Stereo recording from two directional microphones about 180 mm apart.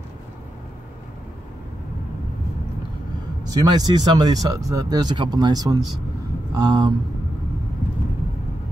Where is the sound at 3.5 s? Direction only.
25° right (ahead or behind).